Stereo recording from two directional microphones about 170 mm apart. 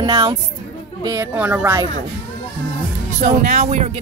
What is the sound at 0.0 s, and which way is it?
A woman's voice, 20° right (ahead or behind).